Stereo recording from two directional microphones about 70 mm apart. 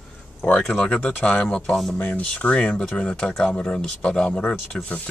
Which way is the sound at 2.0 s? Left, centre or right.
Centre.